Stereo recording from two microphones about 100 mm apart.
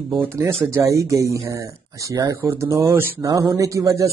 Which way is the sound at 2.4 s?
25° right (ahead or behind).